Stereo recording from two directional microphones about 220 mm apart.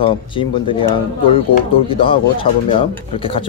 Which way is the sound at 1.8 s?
25° left (ahead or behind).